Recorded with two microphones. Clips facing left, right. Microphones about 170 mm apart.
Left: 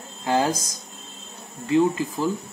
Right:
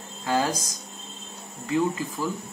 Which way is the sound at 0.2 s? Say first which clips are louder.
Left 3 dB; 25° left (ahead or behind).